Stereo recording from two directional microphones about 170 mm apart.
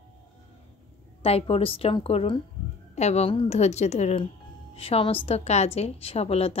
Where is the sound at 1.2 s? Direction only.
35° left (ahead or behind).